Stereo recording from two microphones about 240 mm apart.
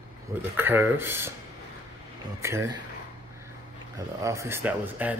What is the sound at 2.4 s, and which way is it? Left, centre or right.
Speech, centre.